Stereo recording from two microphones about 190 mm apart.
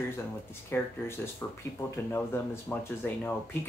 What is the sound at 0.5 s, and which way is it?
Speech, 10° left (ahead or behind).